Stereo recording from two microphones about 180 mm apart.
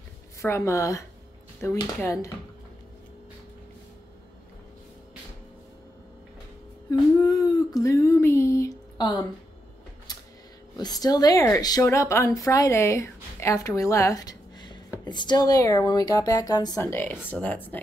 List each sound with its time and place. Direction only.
0.4 s a woman's voice: 15° left (ahead or behind)
6.9 s a sound: 20° left (ahead or behind)
10.8 s a woman's voice: 20° left (ahead or behind)